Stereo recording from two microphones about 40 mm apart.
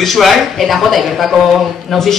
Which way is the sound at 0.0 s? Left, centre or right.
Centre.